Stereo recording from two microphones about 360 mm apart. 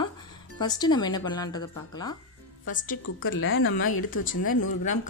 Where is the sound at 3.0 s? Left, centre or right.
Left.